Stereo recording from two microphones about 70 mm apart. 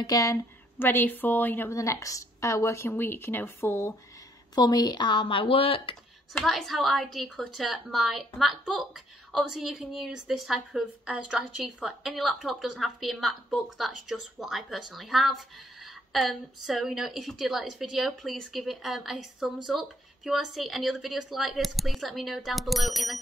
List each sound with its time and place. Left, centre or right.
0.0 s a woman's voice: left
0.7 s speech: left
1.7 s speech: left
2.9 s speech: left
4.6 s a woman's voice: left
6.3 s a woman's voice: centre
11.1 s a woman's voice: centre